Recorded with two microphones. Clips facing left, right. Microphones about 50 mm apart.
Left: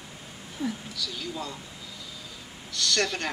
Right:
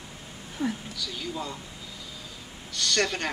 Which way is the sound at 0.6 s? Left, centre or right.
Right.